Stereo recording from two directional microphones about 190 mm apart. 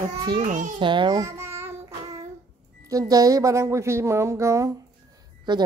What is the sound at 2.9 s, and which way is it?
Speech, 20° right (ahead or behind).